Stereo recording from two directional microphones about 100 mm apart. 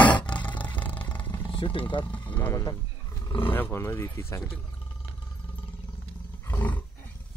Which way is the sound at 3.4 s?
20° left (ahead or behind).